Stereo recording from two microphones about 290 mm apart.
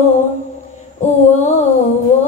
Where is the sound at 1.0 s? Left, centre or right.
Left.